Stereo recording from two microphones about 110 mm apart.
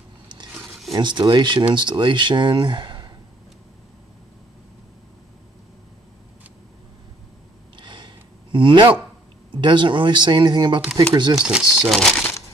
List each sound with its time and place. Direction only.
0.6 s a sound: centre (ahead or behind)
0.9 s speech: 45° right (ahead or behind)
7.8 s a sound: 45° right (ahead or behind)
9.5 s speech: 45° right (ahead or behind)
11.3 s speech: 5° right (ahead or behind)
11.9 s speech: 5° left (ahead or behind)